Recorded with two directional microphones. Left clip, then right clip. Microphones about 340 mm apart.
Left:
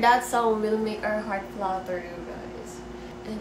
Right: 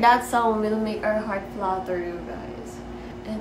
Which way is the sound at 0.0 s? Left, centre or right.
Centre.